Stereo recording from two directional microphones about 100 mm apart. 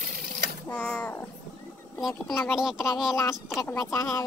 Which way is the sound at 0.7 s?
10° left (ahead or behind).